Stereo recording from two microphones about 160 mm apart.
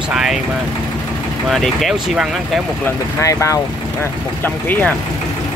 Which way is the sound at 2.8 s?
20° left (ahead or behind).